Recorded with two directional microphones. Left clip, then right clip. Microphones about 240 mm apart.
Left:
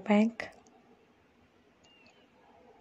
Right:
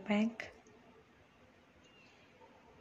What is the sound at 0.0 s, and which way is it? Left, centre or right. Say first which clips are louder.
Speech: left 8 dB; left.